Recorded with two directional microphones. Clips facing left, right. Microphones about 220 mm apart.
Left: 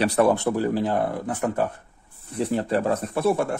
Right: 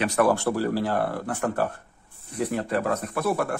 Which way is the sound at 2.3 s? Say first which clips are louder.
Left 3 dB; 30° left (ahead or behind).